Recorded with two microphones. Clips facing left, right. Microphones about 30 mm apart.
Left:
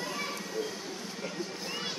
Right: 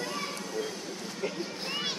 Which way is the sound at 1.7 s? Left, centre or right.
Right.